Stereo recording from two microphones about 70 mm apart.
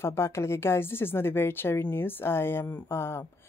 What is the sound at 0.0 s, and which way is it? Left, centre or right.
Speech, left.